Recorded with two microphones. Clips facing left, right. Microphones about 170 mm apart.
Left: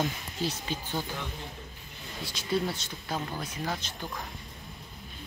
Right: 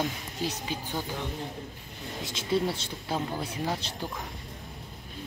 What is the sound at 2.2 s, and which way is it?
Speech, 25° right (ahead or behind).